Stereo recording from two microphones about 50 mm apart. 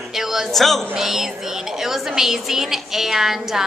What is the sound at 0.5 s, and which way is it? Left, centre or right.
A woman's voice, centre.